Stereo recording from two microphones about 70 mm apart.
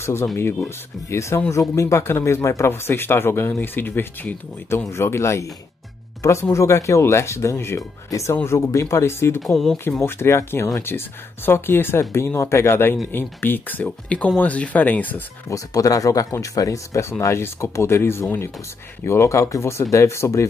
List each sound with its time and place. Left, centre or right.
0.0 s speech: left
6.5 s speech: left
15.4 s speech: left